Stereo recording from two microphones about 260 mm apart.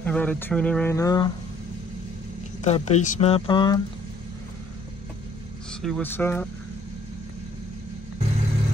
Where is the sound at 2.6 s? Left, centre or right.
Left.